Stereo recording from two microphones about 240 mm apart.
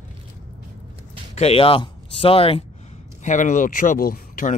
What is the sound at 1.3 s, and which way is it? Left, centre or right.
Speech, left.